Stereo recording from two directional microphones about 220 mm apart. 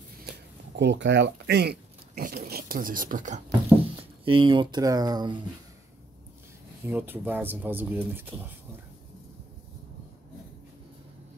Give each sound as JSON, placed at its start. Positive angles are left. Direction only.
{"t": 0.2, "sound": "speech", "side_deg": -50}
{"t": 3.9, "sound": "speech", "side_deg": -25}
{"t": 6.9, "sound": "speech", "side_deg": -10}